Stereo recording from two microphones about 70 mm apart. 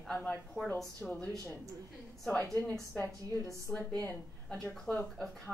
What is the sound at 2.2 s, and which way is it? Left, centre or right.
Speech, centre.